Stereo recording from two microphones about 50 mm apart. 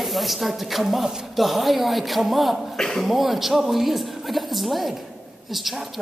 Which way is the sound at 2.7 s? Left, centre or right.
Centre.